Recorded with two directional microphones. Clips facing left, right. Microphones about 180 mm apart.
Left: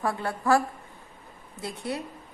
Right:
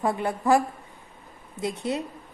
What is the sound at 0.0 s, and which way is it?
A woman's voice, 20° right (ahead or behind).